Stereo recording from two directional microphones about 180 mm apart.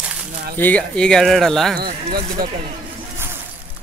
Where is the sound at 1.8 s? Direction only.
60° right (ahead or behind).